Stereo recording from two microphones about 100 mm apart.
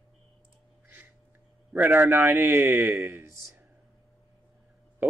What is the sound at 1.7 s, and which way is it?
Speech, 20° right (ahead or behind).